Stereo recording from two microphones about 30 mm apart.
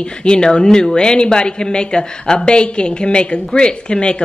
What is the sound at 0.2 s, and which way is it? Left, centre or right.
Speech, left.